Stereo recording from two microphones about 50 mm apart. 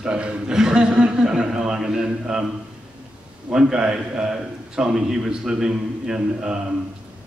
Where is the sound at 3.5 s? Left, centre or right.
Centre.